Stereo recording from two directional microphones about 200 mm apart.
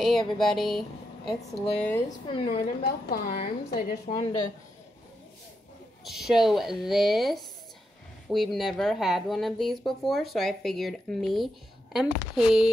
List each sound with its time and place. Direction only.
0.0 s speech: centre (ahead or behind)
2.0 s speech: 25° left (ahead or behind)
2.4 s a woman's voice: 50° left (ahead or behind)
4.1 s speech: 25° left (ahead or behind)
6.0 s speech: centre (ahead or behind)